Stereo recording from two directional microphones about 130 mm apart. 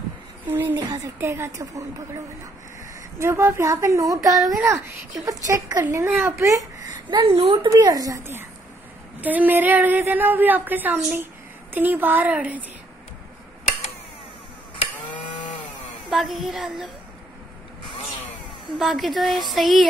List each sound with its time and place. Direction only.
0.5 s a woman's voice: 15° right (ahead or behind)
0.7 s a woman's voice: 30° right (ahead or behind)
3.2 s a woman's voice: 20° right (ahead or behind)
7.1 s speech: 40° right (ahead or behind)
7.7 s a woman's voice: 30° right (ahead or behind); by 12.6 s 10° right (ahead or behind)
16.1 s speech: centre (ahead or behind)
18.8 s speech: centre (ahead or behind)